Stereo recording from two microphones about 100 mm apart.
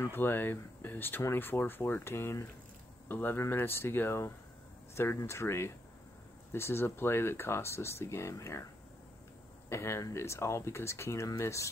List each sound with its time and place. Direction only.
0.0 s speech: 20° left (ahead or behind)
9.7 s speech: 30° left (ahead or behind)